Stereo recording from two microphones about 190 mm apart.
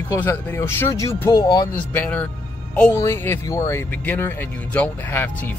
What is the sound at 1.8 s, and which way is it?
Speech, 10° left (ahead or behind).